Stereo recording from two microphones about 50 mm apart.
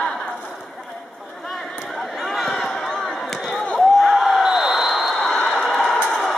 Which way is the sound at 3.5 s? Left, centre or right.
Left.